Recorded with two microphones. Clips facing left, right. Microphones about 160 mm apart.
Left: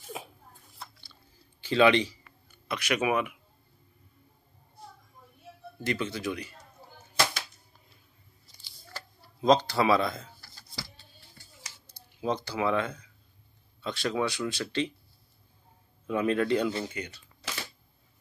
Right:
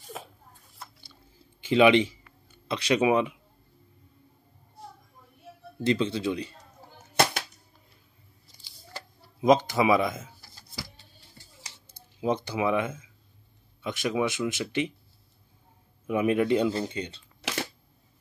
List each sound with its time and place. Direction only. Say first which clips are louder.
0.2 s a sound: right 1 dB; 5° left (ahead or behind)
1.6 s speech: right 3 dB; 20° right (ahead or behind)
5.9 s speech: right 6 dB; 25° right (ahead or behind)
8.8 s a sound: right 2 dB; 15° right (ahead or behind)
12.2 s speech: right 3 dB; 20° right (ahead or behind)
16.1 s speech: right 2 dB; 15° right (ahead or behind)
17.4 s camera: right 7 dB; 85° right